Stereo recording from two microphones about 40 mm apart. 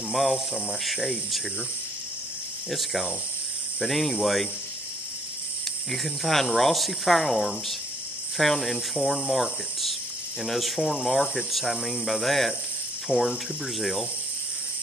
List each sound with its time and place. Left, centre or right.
0.1 s speech: centre
2.7 s speech: centre
5.9 s speech: centre
13.1 s speech: right
13.7 s speech: centre